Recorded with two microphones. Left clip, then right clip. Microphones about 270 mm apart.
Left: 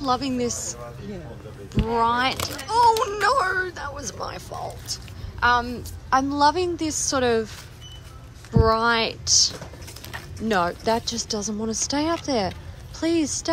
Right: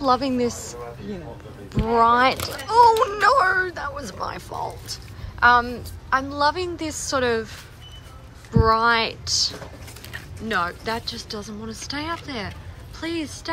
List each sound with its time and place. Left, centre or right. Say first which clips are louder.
0.0 s a child's voice: right 4 dB; centre
8.5 s a child's voice: right 2 dB; centre